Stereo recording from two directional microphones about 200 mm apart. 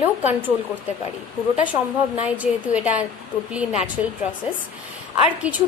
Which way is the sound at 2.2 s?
5° right (ahead or behind).